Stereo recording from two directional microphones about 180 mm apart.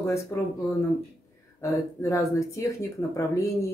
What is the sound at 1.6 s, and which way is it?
Speech, 15° left (ahead or behind).